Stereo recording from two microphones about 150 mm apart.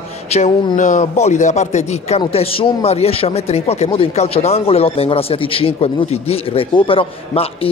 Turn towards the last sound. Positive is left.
turn(degrees=35)  # may be behind; listen again after turning